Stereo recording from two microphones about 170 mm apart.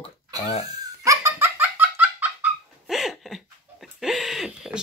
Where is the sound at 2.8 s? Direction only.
Centre (ahead or behind).